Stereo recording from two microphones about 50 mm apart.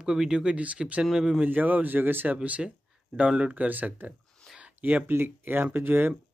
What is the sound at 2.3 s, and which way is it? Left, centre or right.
Speech, right.